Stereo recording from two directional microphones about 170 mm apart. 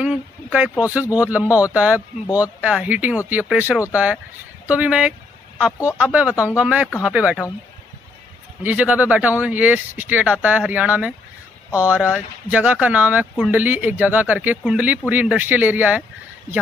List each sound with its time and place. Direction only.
0.0 s a sound: 5° right (ahead or behind)
1.0 s speech: 20° left (ahead or behind)
1.6 s speech: 10° right (ahead or behind)
5.7 s speech: 20° left (ahead or behind)
5.9 s speech: 5° right (ahead or behind)
8.6 s speech: 10° right (ahead or behind)